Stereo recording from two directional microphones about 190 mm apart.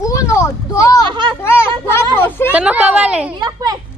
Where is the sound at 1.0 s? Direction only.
25° right (ahead or behind).